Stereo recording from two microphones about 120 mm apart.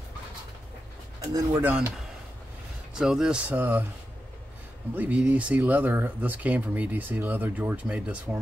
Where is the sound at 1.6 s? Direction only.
15° right (ahead or behind).